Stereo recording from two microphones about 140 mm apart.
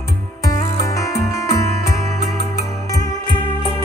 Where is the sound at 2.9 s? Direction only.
25° left (ahead or behind).